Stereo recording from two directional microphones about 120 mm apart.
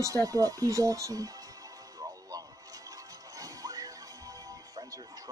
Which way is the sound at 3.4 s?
30° right (ahead or behind).